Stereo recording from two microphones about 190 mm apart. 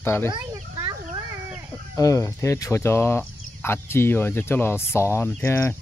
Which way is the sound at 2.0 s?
15° left (ahead or behind).